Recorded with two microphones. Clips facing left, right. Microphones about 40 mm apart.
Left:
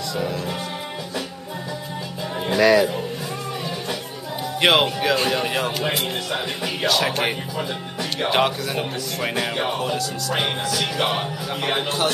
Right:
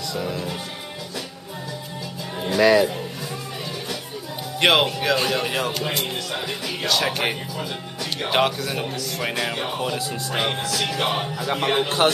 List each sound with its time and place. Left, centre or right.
2.6 s speech: centre
4.6 s speech: centre
6.3 s music: centre
6.9 s speech: centre
7.5 s speech: left
8.3 s speech: centre
10.3 s music: centre
11.5 s speech: centre